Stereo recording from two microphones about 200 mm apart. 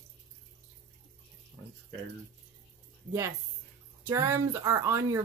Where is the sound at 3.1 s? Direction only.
15° right (ahead or behind).